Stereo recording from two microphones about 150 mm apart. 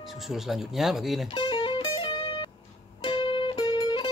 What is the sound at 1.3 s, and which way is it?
Music, 30° left (ahead or behind).